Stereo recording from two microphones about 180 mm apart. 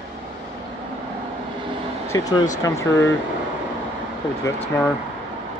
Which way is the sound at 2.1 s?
20° left (ahead or behind).